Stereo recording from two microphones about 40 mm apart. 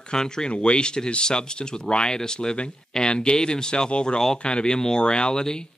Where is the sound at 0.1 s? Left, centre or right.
Centre.